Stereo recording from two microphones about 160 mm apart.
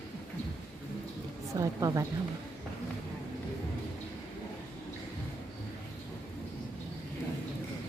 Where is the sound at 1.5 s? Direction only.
20° right (ahead or behind).